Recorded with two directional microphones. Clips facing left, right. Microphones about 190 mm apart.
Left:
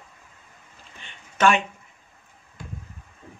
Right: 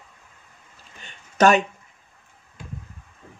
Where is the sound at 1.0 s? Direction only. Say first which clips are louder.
Right 4 dB; 40° right (ahead or behind).